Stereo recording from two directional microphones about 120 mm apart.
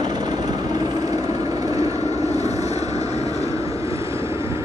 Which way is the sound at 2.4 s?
65° left (ahead or behind).